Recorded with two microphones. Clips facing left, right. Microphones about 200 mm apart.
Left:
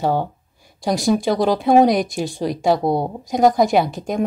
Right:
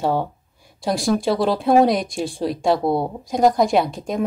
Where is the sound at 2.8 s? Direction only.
20° left (ahead or behind).